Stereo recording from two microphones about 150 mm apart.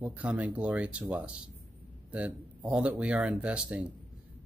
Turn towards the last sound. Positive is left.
turn(degrees=-10)  # may be behind; listen again after turning